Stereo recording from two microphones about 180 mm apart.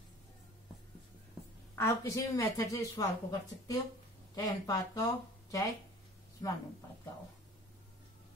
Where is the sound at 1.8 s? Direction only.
15° left (ahead or behind).